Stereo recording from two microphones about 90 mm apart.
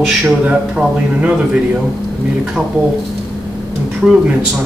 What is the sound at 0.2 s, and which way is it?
A man's voice, 10° right (ahead or behind).